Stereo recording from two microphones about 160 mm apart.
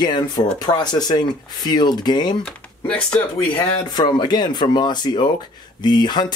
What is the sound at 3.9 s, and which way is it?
Speech, 25° left (ahead or behind).